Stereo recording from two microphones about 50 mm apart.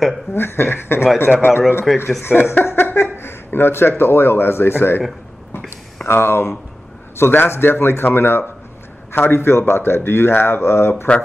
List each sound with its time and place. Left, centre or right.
0.3 s speech: left
1.9 s speech: centre
2.2 s speech: left
6.0 s speech: left